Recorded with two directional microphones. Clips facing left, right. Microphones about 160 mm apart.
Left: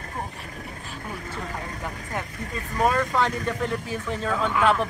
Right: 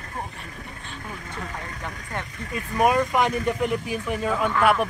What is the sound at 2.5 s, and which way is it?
Speech, 15° right (ahead or behind).